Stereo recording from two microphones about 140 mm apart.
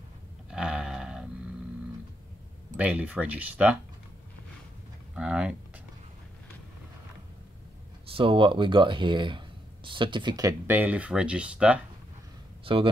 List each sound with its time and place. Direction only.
0.5 s a sound: 5° right (ahead or behind)
2.8 s speech: 10° right (ahead or behind)
5.1 s speech: 5° right (ahead or behind)
8.1 s speech: 40° right (ahead or behind)
10.7 s speech: 10° right (ahead or behind)
12.6 s speech: 40° right (ahead or behind)